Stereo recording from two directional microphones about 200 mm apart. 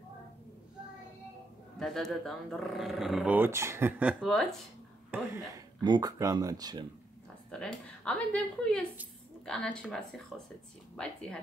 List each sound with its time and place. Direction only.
1.8 s speech: centre (ahead or behind)
5.1 s speech: 15° right (ahead or behind)
7.5 s speech: 5° left (ahead or behind)